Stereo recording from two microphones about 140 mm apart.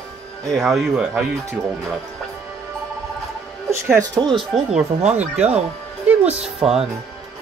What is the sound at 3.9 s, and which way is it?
Speech, 25° right (ahead or behind).